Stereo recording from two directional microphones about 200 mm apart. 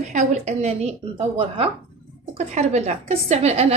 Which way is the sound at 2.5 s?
35° right (ahead or behind).